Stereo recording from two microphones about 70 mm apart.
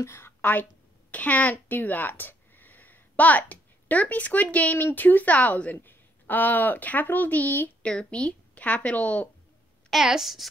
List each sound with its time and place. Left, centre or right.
0.0 s a woman's voice: left
7.8 s a woman's voice: centre
9.8 s a woman's voice: centre